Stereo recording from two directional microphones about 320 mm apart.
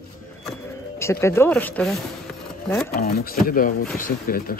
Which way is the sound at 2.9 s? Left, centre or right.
Left.